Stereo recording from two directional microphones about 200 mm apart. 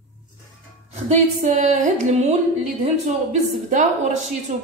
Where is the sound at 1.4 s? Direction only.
35° right (ahead or behind).